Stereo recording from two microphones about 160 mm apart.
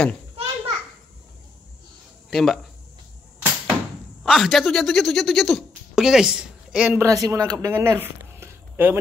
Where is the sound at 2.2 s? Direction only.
Centre (ahead or behind).